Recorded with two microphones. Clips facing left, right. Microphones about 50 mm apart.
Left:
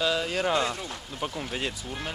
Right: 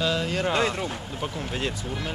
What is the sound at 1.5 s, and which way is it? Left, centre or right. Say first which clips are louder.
Speech: right 5 dB; centre.